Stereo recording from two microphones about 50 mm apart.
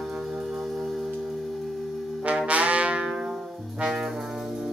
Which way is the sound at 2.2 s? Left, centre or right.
Right.